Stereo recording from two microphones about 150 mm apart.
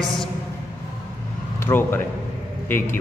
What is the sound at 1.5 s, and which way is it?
A man's voice, 15° left (ahead or behind).